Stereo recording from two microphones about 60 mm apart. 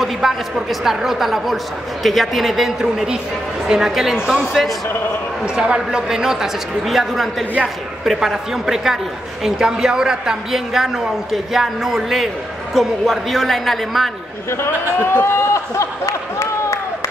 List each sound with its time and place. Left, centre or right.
0.0 s a man's voice: centre
5.4 s a man's voice: centre
15.1 s a sound: left